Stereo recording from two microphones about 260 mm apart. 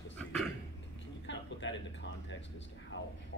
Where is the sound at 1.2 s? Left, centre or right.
Left.